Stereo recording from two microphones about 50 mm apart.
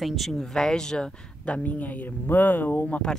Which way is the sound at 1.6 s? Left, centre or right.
Left.